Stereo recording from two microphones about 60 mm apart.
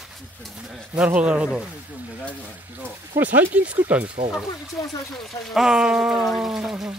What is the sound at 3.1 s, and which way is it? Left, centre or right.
Speech, right.